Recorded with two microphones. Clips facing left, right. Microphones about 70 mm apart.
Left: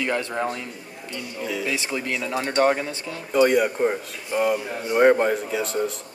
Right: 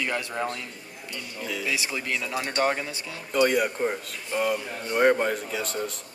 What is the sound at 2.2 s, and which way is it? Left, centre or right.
Speech, left.